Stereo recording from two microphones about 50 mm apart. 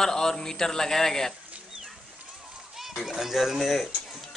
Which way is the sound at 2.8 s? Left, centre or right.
Centre.